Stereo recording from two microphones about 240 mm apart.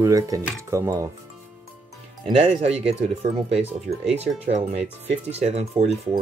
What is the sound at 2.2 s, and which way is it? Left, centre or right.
Speech, right.